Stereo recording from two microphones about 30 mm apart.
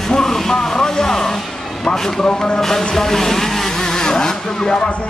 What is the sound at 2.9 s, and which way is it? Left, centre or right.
Speech, centre.